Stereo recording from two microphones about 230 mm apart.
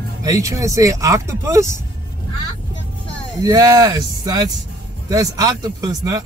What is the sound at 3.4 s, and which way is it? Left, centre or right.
Speech, centre.